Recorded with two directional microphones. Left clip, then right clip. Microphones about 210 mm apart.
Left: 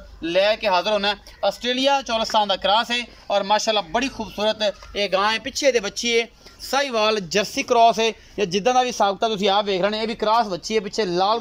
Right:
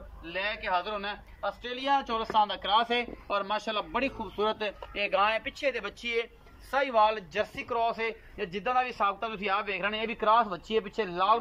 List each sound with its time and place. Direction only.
0.2 s a man's voice: 45° left (ahead or behind)
6.7 s a man's voice: 60° left (ahead or behind); by 11.3 s 25° left (ahead or behind)